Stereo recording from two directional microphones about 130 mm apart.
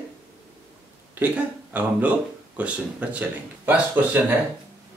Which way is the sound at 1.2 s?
10° right (ahead or behind).